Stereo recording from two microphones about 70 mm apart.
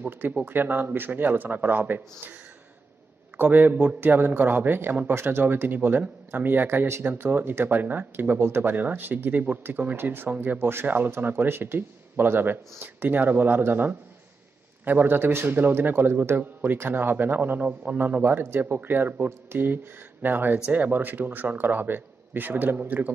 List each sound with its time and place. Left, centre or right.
0.5 s a man's voice: right
3.3 s a man's voice: right